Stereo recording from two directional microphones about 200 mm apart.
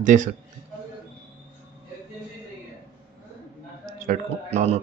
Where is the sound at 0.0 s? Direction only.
40° right (ahead or behind).